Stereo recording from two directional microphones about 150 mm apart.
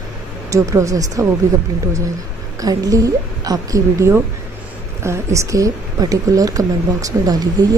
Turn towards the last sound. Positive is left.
turn(degrees=-25)  # may be behind; listen again after turning